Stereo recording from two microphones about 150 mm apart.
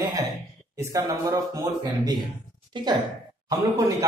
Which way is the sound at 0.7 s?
25° right (ahead or behind).